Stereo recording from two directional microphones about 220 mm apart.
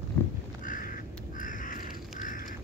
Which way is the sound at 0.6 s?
40° left (ahead or behind).